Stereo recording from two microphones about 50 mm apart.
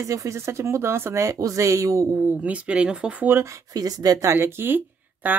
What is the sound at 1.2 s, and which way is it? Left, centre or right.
Speech, right.